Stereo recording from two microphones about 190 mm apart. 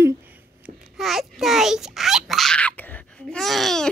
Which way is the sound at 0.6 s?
Centre (ahead or behind).